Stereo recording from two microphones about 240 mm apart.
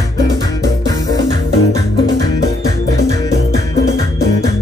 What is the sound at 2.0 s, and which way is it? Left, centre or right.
Music, right.